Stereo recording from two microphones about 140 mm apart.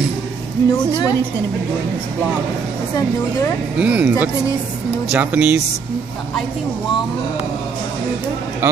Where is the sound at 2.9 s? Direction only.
20° left (ahead or behind).